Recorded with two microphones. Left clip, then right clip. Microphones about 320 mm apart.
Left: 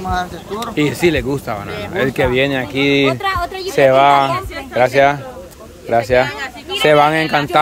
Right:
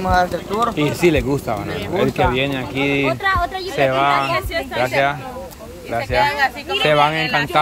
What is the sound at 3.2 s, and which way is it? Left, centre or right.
Speech, left.